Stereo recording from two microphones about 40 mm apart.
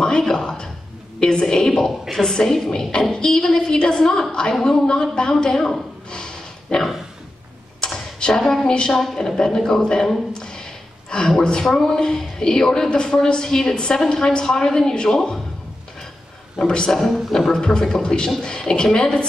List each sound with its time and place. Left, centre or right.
0.2 s a sound: centre
1.2 s a woman's voice: centre
1.9 s a woman's voice: centre
6.0 s a sound: centre
7.8 s arrow: centre
8.4 s a woman's voice: centre
8.6 s a man's voice: left
10.3 s a sound: centre
11.6 s a woman's voice: centre
16.5 s a man's voice: left